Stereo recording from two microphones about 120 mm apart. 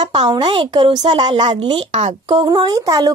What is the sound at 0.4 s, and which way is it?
Speech, 45° right (ahead or behind).